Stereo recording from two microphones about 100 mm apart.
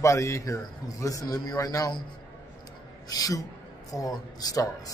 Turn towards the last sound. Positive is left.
turn(degrees=35)  # may be behind; listen again after turning